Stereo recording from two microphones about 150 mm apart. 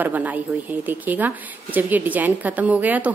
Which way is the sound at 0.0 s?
10° right (ahead or behind).